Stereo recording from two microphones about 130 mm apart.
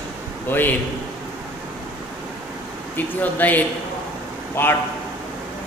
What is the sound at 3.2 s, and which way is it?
A man's voice, 15° left (ahead or behind).